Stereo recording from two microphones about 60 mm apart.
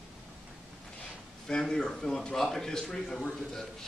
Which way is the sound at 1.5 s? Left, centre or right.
Centre.